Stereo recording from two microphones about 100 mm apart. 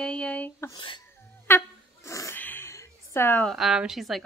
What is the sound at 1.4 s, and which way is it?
Dog, 25° left (ahead or behind).